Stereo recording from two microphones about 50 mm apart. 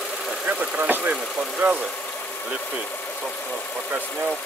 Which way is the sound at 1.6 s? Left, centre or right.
Right.